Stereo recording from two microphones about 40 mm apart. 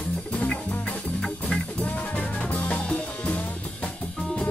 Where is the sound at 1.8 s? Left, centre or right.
Left.